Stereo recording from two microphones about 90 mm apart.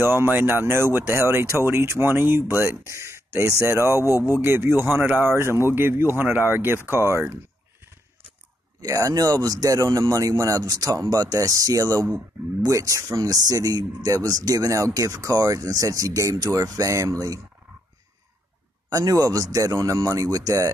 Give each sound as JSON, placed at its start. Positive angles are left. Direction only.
{"t": 0.0, "sound": "speech", "side_deg": -25}
{"t": 8.8, "sound": "speech", "side_deg": -40}
{"t": 18.9, "sound": "speech", "side_deg": -40}